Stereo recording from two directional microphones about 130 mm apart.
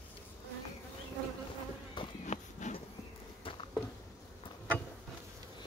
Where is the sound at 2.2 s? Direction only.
60° left (ahead or behind).